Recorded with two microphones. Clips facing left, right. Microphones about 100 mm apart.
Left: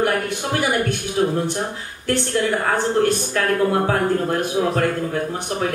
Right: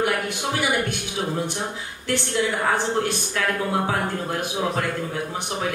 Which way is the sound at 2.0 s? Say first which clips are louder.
Left 3 dB; 45° left (ahead or behind).